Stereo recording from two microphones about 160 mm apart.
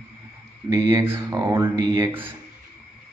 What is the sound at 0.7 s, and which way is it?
Speech, 20° right (ahead or behind).